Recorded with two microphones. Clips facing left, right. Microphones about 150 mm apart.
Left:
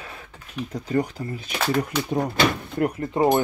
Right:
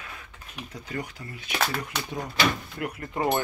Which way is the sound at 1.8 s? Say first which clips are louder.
Left 9 dB; 45° left (ahead or behind).